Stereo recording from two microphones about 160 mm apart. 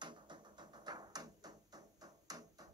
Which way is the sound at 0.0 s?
30° right (ahead or behind).